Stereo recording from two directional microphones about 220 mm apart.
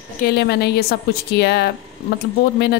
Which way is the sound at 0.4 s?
50° left (ahead or behind).